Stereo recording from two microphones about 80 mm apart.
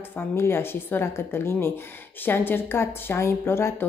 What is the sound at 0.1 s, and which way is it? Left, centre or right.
Speech, left.